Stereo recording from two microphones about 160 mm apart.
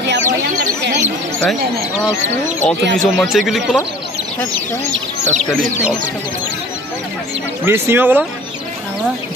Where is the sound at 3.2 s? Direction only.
Centre (ahead or behind).